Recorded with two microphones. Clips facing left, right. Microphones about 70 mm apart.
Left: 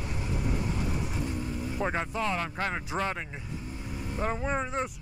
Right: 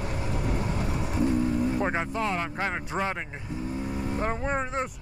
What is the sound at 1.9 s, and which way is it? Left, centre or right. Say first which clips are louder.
Speech: right 2 dB; centre.